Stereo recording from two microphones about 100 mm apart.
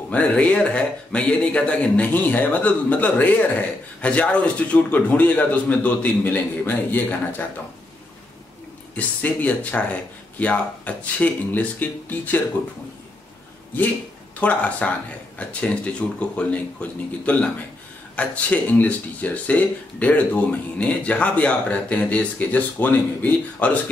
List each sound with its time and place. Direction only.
0.1 s speech: 15° left (ahead or behind)
8.9 s speech: 15° left (ahead or behind)
14.4 s speech: 15° left (ahead or behind)